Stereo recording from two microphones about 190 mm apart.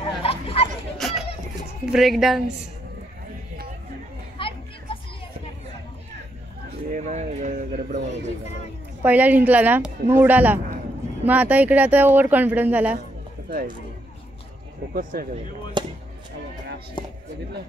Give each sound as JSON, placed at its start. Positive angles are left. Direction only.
{"t": 0.2, "sound": "a sound", "side_deg": 30}
{"t": 0.9, "sound": "a sound", "side_deg": 0}
{"t": 1.9, "sound": "a woman's voice", "side_deg": 0}
{"t": 4.4, "sound": "children playing", "side_deg": 30}
{"t": 6.9, "sound": "speech", "side_deg": -40}
{"t": 9.0, "sound": "speech", "side_deg": -10}
{"t": 15.0, "sound": "speech", "side_deg": -45}
{"t": 15.8, "sound": "speech", "side_deg": -25}
{"t": 17.0, "sound": "speech", "side_deg": 25}